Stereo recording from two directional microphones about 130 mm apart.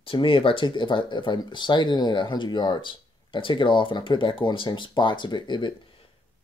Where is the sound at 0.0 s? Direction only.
45° left (ahead or behind).